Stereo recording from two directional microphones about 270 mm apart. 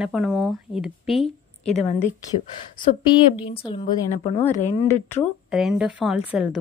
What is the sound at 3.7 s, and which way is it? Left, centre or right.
Speech, centre.